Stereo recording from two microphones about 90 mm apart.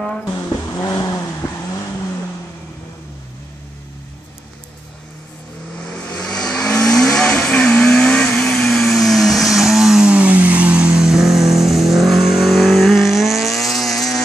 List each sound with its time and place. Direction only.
0.3 s vehicle: 40° left (ahead or behind)
5.8 s vehicle: 10° left (ahead or behind)